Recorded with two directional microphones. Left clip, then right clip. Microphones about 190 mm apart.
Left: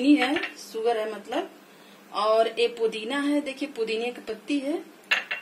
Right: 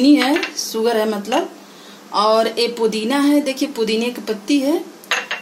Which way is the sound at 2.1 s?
50° right (ahead or behind).